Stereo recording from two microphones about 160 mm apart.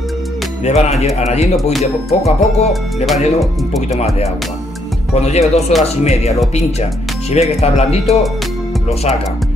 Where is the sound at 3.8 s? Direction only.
40° left (ahead or behind).